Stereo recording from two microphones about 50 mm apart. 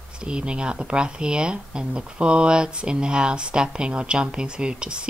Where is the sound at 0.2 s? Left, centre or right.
Centre.